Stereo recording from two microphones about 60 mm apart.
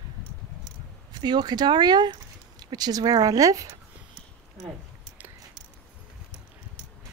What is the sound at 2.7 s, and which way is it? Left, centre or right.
Speech, right.